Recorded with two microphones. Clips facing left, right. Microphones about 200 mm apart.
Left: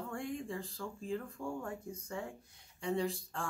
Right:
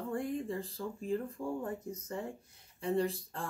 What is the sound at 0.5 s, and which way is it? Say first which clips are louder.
Speech: right 3 dB; centre (ahead or behind).